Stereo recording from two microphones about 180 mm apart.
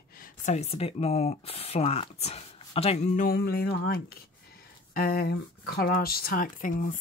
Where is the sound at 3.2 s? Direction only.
55° left (ahead or behind).